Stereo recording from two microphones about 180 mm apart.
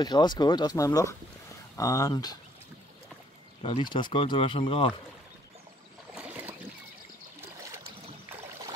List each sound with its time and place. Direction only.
0.0 s speech: 25° left (ahead or behind)
3.6 s speech: 25° left (ahead or behind)
6.1 s boat: 10° right (ahead or behind)